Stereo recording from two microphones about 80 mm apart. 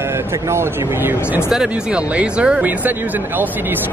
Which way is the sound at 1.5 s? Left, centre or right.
Centre.